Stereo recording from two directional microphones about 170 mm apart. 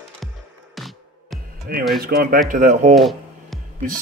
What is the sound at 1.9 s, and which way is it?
Speech, 60° right (ahead or behind).